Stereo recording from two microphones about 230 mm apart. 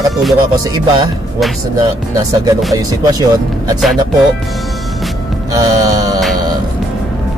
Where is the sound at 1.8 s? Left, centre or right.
Centre.